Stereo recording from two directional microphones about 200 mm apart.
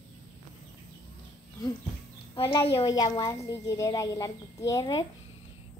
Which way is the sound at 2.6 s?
25° left (ahead or behind).